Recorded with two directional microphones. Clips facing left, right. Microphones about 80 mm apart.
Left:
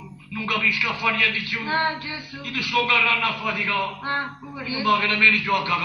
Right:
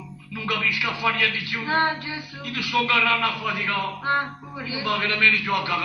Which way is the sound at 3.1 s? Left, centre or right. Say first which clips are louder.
Right 1 dB; right.